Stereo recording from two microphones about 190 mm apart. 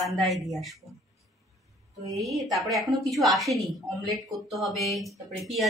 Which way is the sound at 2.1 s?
Centre (ahead or behind).